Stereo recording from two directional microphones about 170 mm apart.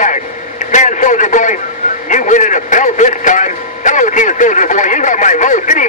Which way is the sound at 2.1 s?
45° left (ahead or behind).